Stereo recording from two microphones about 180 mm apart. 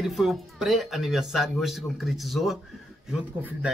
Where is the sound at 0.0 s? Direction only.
Centre (ahead or behind).